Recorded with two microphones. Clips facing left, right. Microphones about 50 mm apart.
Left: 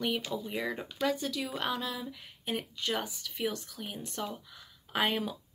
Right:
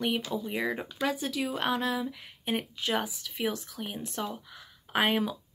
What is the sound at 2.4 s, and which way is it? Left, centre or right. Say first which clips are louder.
Speech: right 3 dB; right.